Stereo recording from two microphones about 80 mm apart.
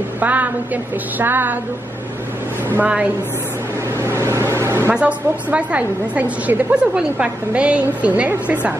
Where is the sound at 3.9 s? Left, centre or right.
Right.